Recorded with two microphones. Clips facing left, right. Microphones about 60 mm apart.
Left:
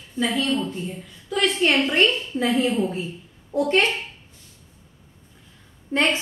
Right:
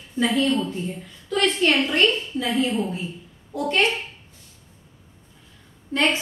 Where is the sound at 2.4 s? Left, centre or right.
Left.